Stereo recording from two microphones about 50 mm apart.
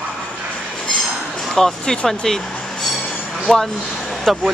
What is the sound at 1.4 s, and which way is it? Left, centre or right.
Speech, centre.